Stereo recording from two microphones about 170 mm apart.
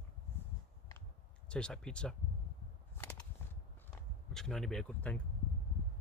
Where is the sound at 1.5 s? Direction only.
5° left (ahead or behind).